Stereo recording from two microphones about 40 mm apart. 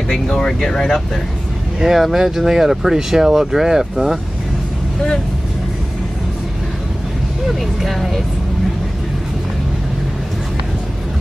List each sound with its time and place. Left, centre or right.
0.5 s speech: centre
1.8 s speech: centre
7.4 s speech: centre